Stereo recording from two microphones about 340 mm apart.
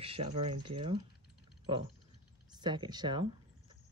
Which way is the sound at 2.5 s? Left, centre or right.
Centre.